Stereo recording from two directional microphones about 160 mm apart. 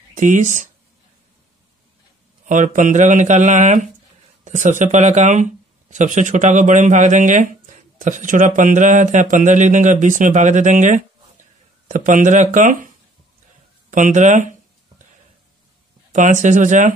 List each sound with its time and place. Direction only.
0.1 s speech: 50° right (ahead or behind)
2.4 s speech: 55° right (ahead or behind)
16.1 s speech: 50° right (ahead or behind)